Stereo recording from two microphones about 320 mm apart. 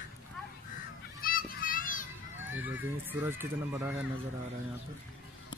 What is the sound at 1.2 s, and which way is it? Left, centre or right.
Children playing, left.